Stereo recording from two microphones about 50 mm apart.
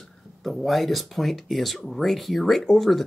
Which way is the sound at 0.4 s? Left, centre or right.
Centre.